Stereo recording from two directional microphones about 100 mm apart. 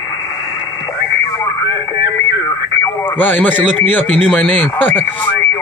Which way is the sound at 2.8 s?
25° left (ahead or behind).